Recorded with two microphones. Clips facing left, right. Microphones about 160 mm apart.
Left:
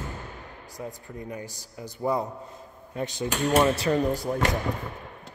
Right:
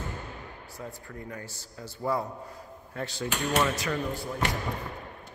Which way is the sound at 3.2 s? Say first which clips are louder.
Left 5 dB; 30° left (ahead or behind).